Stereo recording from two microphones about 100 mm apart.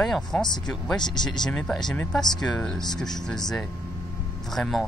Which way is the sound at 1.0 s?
45° left (ahead or behind).